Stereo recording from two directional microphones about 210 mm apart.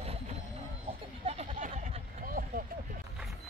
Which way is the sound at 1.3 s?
35° right (ahead or behind).